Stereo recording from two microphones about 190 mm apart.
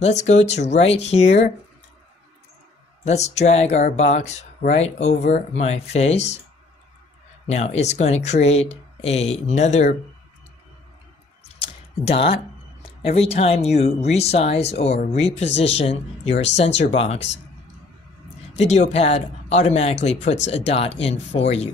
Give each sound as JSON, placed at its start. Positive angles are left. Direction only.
{"t": 0.0, "sound": "speech", "side_deg": 35}
{"t": 3.1, "sound": "speech", "side_deg": 35}
{"t": 7.4, "sound": "speech", "side_deg": 35}
{"t": 11.6, "sound": "a sound", "side_deg": 30}
{"t": 13.0, "sound": "speech", "side_deg": 30}
{"t": 18.6, "sound": "speech", "side_deg": 35}